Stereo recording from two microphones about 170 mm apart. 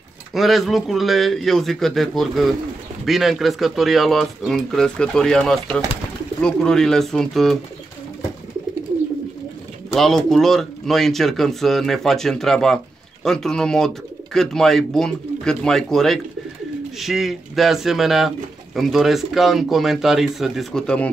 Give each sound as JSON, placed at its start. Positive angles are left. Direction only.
{"t": 0.3, "sound": "speech", "side_deg": 0}
{"t": 9.9, "sound": "speech", "side_deg": 0}